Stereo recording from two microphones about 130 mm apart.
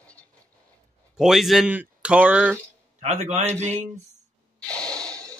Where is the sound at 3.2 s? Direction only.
60° right (ahead or behind).